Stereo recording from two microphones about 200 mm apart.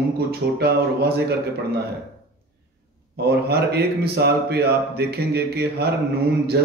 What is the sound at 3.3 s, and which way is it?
Speech, 55° right (ahead or behind).